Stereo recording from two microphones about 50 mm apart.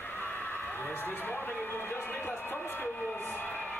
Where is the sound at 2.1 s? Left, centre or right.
Left.